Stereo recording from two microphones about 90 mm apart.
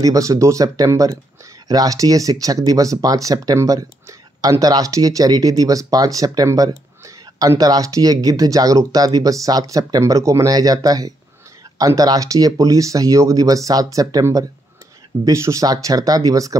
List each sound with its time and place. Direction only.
0.0 s speech: 40° right (ahead or behind)